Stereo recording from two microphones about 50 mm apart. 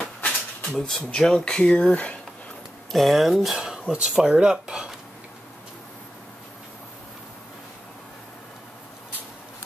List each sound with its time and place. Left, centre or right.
0.7 s speech: centre; by 2.1 s left
2.9 s speech: centre
3.5 s a sound: centre
4.0 s speech: centre